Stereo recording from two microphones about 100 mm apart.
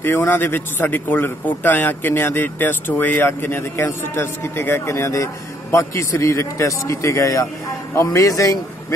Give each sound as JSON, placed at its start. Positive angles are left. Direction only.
{"t": 0.0, "sound": "a man's voice", "side_deg": 20}